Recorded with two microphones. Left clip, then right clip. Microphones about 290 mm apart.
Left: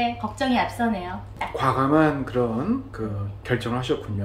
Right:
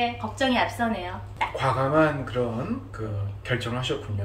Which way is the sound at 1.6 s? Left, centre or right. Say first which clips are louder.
Left 2 dB; left.